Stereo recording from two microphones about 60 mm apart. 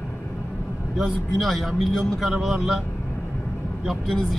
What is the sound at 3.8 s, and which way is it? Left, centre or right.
Speech, centre.